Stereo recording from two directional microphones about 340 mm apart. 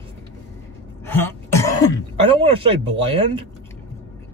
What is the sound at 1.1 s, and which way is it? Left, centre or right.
Throat clearing, centre.